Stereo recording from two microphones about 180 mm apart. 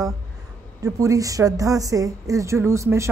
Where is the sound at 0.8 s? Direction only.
20° right (ahead or behind).